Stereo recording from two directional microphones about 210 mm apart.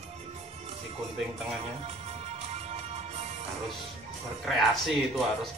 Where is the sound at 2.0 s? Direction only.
30° right (ahead or behind).